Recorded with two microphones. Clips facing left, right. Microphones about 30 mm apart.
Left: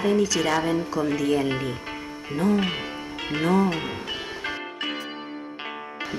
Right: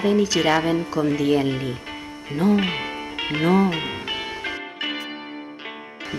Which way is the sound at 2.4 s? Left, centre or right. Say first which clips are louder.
Right 3 dB; right.